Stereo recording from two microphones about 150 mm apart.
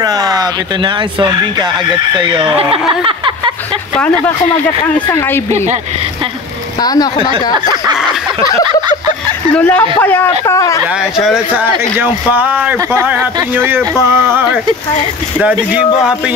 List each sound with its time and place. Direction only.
0.0 s speech: 25° right (ahead or behind)
6.8 s a woman's voice: 25° left (ahead or behind)
7.2 s speech: 30° right (ahead or behind)
9.5 s speech: 10° left (ahead or behind)
11.1 s speech: 5° right (ahead or behind)